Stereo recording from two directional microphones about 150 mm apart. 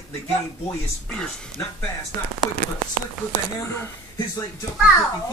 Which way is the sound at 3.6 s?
15° left (ahead or behind).